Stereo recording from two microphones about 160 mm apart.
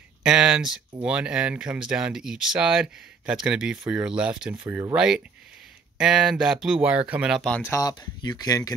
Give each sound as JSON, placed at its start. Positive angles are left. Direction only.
{"t": 0.2, "sound": "speech", "side_deg": -5}
{"t": 4.6, "sound": "speech", "side_deg": -15}
{"t": 4.9, "sound": "speech", "side_deg": -5}
{"t": 7.7, "sound": "speech", "side_deg": 25}